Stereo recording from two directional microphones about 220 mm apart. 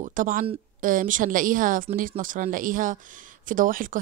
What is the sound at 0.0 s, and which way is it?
A woman's voice, 35° right (ahead or behind).